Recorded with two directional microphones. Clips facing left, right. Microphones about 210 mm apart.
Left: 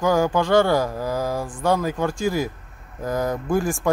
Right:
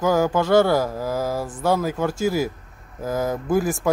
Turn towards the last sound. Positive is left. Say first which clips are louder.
# right 1 dB
turn(degrees=-5)  # may be behind; listen again after turning